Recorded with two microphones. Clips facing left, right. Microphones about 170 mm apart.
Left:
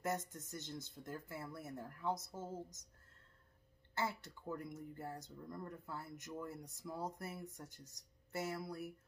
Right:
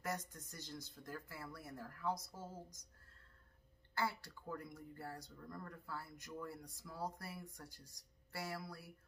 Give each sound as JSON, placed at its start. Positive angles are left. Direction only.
{"t": 0.0, "sound": "speech", "side_deg": 25}
{"t": 3.9, "sound": "speech", "side_deg": 20}